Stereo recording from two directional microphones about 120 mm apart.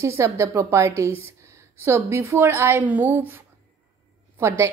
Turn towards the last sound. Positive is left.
turn(degrees=-20)  # may be behind; listen again after turning